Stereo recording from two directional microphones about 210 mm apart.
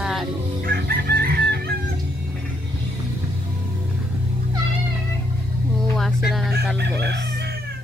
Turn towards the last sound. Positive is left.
turn(degrees=-50)  # may be behind; listen again after turning